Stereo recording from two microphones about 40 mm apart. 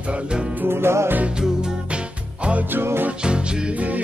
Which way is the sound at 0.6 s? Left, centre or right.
Right.